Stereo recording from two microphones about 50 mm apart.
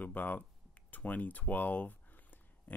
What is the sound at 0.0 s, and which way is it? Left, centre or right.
Speech, left.